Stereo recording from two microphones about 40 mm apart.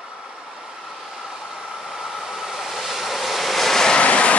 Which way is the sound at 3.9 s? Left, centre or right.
Left.